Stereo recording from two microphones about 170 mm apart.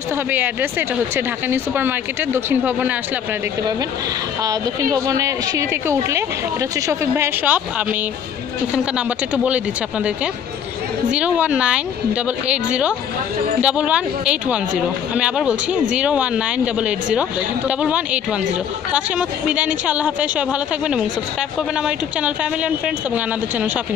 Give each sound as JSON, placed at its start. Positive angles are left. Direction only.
{"t": 0.3, "sound": "speech", "side_deg": -10}
{"t": 5.0, "sound": "speech", "side_deg": -20}
{"t": 11.1, "sound": "speech", "side_deg": -5}